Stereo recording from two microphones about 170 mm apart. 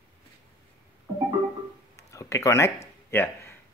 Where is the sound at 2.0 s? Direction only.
20° left (ahead or behind).